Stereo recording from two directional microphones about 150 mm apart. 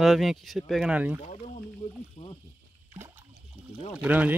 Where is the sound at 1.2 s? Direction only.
50° left (ahead or behind).